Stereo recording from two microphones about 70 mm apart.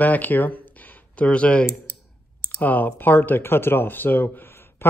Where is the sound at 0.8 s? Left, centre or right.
Left.